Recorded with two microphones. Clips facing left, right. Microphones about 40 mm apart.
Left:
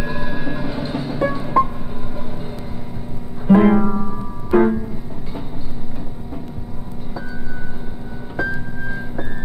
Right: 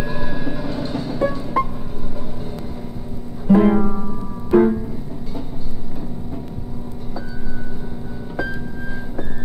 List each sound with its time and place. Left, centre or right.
0.0 s music: centre
3.4 s music: centre